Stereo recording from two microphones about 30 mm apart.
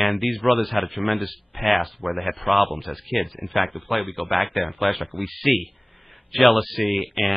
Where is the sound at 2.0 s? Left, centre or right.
Right.